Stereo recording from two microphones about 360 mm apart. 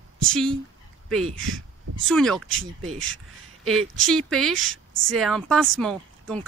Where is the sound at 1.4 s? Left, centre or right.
Right.